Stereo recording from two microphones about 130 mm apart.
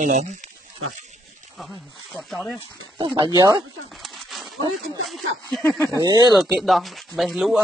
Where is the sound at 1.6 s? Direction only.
Centre (ahead or behind).